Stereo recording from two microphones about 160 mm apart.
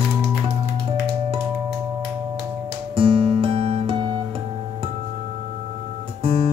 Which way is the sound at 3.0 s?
35° right (ahead or behind).